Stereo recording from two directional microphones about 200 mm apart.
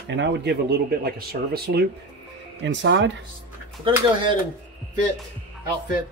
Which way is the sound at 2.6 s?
65° right (ahead or behind).